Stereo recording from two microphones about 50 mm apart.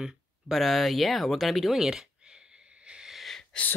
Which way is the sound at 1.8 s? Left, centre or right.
Centre.